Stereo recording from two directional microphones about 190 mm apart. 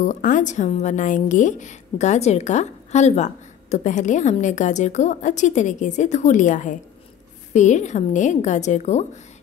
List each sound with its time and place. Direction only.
0.0 s a woman's voice: 40° left (ahead or behind)